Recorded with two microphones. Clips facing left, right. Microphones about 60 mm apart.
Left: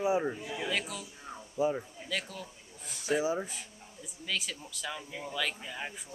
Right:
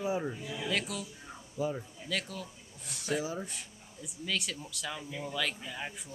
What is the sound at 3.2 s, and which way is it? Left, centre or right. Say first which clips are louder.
Speech: left 5 dB; left.